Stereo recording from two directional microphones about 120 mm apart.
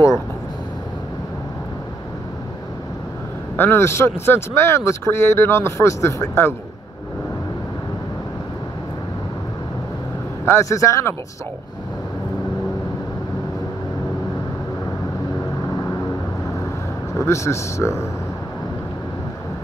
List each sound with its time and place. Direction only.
3.5 s speech: 20° left (ahead or behind)
10.4 s speech: 25° left (ahead or behind)
17.2 s speech: 25° left (ahead or behind)